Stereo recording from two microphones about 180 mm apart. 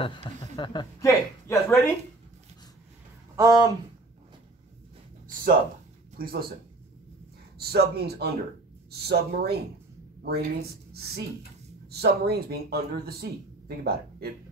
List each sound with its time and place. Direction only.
0.0 s speech: 30° left (ahead or behind)
3.3 s speech: 20° right (ahead or behind)
6.1 s speech: 55° right (ahead or behind)
7.5 s speech: 60° right (ahead or behind)